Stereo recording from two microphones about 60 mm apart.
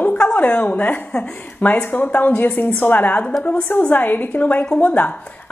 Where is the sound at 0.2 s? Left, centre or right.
Left.